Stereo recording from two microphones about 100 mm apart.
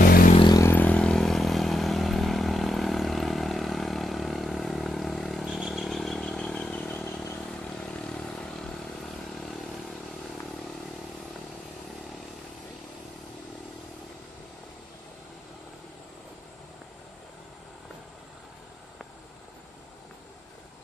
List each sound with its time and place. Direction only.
0.5 s vehicle: 35° left (ahead or behind)
0.7 s vehicle: 15° left (ahead or behind)